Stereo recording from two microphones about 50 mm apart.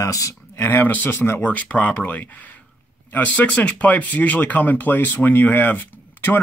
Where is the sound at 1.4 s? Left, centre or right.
Left.